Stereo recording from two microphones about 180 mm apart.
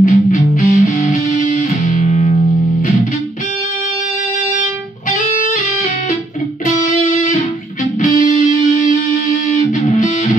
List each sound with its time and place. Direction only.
0.0 s music: 45° left (ahead or behind)
6.8 s music: 45° left (ahead or behind)
8.5 s music: 40° left (ahead or behind)